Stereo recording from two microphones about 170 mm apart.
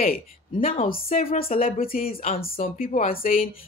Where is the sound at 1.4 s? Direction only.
55° left (ahead or behind).